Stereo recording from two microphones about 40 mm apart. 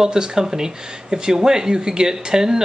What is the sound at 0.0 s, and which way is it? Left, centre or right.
Speech, centre.